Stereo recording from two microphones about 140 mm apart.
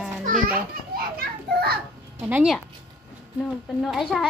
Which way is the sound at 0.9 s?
90° right.